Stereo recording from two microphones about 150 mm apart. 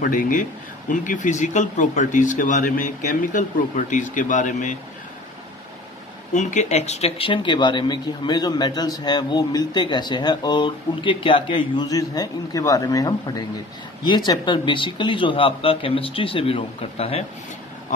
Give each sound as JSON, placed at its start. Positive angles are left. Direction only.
{"t": 0.0, "sound": "speech", "side_deg": 70}
{"t": 6.3, "sound": "a man's voice", "side_deg": 50}